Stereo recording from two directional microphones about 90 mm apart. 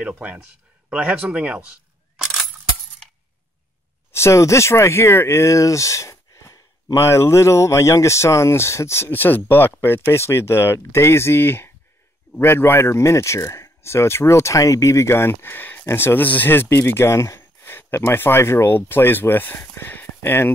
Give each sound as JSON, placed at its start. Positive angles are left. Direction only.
{"t": 0.0, "sound": "speech", "side_deg": -15}
{"t": 4.1, "sound": "speech", "side_deg": 30}